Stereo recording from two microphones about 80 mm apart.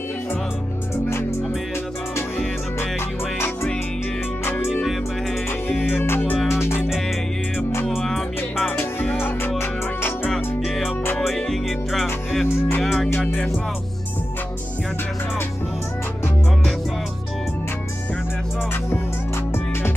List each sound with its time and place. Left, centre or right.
2.1 s music: left
5.9 s music: left
6.9 s music: centre
8.6 s music: centre
9.1 s music: left
10.3 s music: centre
12.4 s music: left
12.8 s music: centre